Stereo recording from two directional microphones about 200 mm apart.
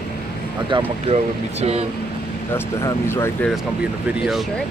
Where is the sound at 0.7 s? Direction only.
30° right (ahead or behind).